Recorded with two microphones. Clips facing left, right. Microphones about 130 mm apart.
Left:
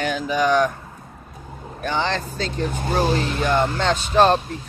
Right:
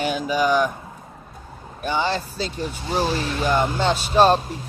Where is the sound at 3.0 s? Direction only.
10° right (ahead or behind).